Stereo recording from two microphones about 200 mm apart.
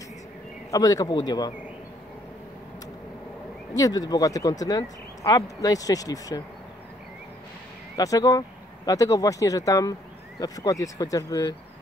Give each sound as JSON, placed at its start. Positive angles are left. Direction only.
{"t": 0.7, "sound": "speech", "side_deg": 20}
{"t": 3.7, "sound": "speech", "side_deg": 20}
{"t": 8.0, "sound": "speech", "side_deg": 15}